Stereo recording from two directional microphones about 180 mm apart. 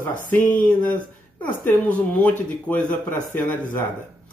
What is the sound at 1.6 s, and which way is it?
Speech, 10° left (ahead or behind).